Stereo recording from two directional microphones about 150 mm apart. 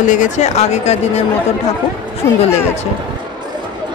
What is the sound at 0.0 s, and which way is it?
Speech, 55° left (ahead or behind).